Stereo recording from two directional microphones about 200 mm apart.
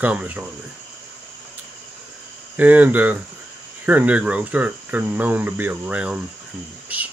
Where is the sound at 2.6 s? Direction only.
10° right (ahead or behind).